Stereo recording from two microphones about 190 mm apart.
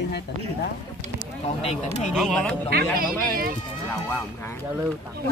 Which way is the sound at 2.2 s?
Centre (ahead or behind).